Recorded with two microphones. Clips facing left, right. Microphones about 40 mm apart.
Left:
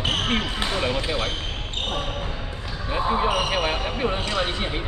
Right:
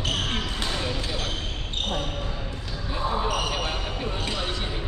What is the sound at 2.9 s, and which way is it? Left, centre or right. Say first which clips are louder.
Basketball bounce: left 5 dB; left.